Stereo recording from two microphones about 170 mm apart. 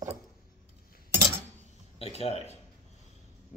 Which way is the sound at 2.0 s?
35° left (ahead or behind).